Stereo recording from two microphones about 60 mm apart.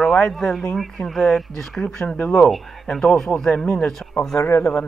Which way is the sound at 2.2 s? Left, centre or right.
Centre.